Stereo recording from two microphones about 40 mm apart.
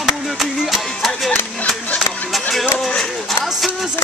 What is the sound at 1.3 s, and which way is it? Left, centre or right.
Music, left.